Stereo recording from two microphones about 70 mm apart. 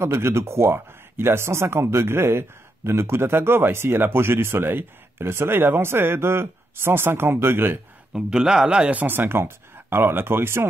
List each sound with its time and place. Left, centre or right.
0.0 s speech: right
8.1 s speech: centre
9.0 s speech: right